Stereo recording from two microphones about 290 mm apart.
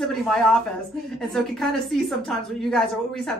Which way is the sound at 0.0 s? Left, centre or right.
Centre.